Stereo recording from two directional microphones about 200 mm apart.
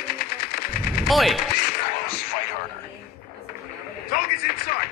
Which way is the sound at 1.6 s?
50° left (ahead or behind).